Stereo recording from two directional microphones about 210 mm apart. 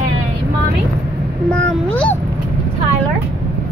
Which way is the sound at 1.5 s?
5° left (ahead or behind).